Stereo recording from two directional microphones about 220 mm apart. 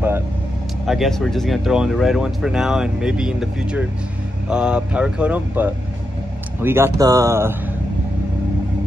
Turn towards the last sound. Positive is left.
turn(degrees=-10)  # may be behind; listen again after turning